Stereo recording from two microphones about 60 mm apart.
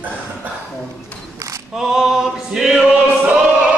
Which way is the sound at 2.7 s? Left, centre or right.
Centre.